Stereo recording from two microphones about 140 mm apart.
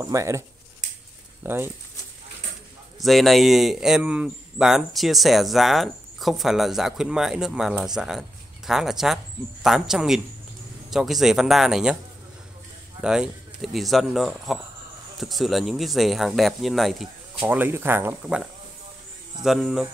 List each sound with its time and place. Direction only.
0.0 s speech: 20° right (ahead or behind)
1.4 s speech: 15° right (ahead or behind)
3.0 s speech: centre (ahead or behind)
13.0 s speech: 5° right (ahead or behind)
17.4 s speech: 15° right (ahead or behind)